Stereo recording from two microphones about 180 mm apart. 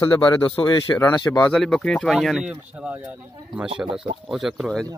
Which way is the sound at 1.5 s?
Centre (ahead or behind).